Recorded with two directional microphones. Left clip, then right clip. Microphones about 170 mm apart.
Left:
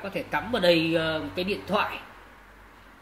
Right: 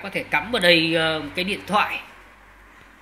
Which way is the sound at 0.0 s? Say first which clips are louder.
Right 6 dB; 10° right (ahead or behind).